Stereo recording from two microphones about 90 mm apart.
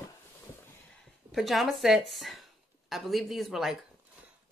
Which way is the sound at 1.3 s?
Centre (ahead or behind).